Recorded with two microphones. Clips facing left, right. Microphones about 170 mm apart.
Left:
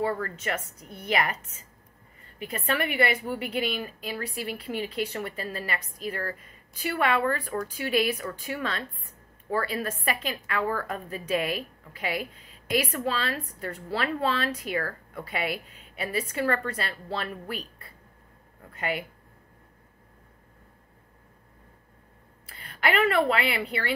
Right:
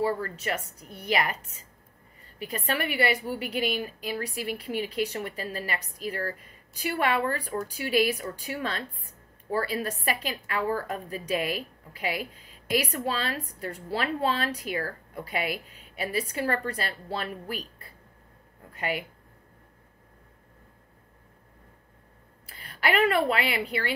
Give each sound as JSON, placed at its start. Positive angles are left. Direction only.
{"t": 0.0, "sound": "a woman's voice", "side_deg": -35}
{"t": 2.3, "sound": "a woman's voice", "side_deg": -35}
{"t": 22.7, "sound": "a woman's voice", "side_deg": -40}